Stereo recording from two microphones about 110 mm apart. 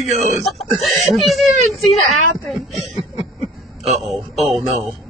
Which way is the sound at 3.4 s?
90° right.